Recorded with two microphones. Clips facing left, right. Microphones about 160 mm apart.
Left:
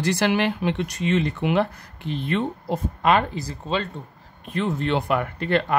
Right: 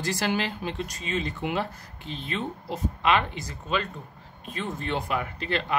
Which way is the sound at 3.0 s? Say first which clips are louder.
Left 4 dB; 45° left (ahead or behind).